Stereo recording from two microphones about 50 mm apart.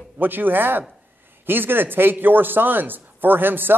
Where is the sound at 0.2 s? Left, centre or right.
Right.